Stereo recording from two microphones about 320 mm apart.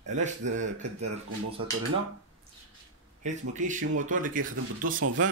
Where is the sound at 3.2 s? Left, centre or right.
Right.